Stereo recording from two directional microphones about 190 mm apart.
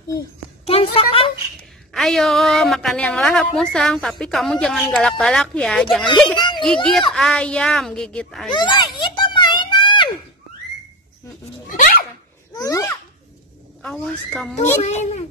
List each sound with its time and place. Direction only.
0.7 s a woman's voice: 30° left (ahead or behind)
1.9 s a woman's voice: centre (ahead or behind)
6.3 s a sound: 25° left (ahead or behind)
6.6 s a woman's voice: 5° left (ahead or behind)
8.5 s a sound: 25° left (ahead or behind)
11.7 s dog: 50° left (ahead or behind)
12.5 s babbling: 20° left (ahead or behind)
13.8 s a woman's voice: 5° left (ahead or behind)
14.8 s speech: 35° left (ahead or behind)